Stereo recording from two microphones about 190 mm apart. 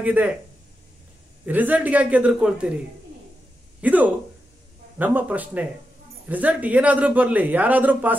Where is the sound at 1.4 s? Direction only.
10° right (ahead or behind).